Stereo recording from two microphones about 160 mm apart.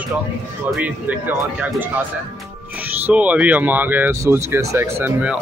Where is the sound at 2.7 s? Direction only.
10° right (ahead or behind).